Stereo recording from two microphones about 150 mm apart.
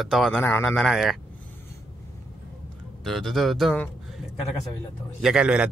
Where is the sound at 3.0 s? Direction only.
Centre (ahead or behind).